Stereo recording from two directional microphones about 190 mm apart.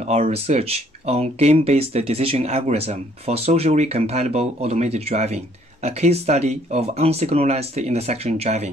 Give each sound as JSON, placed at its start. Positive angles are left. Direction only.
{"t": 0.0, "sound": "speech", "side_deg": -35}